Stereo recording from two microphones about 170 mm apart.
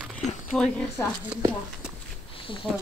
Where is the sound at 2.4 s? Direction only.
30° left (ahead or behind).